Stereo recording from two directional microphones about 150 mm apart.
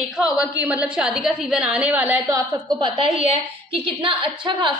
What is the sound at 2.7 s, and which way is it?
A woman's voice, 35° right (ahead or behind).